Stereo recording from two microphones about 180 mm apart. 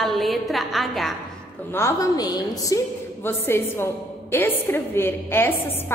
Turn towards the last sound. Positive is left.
turn(degrees=10)  # may be behind; listen again after turning